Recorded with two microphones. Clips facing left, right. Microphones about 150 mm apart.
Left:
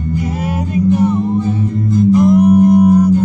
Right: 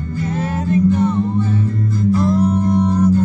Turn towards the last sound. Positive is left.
turn(degrees=15)  # may be behind; listen again after turning